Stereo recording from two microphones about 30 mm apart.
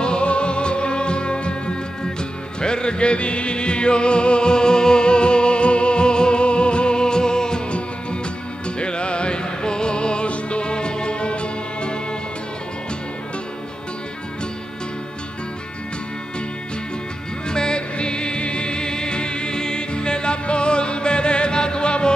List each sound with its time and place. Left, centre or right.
0.0 s music: left
8.6 s music: left
17.5 s music: left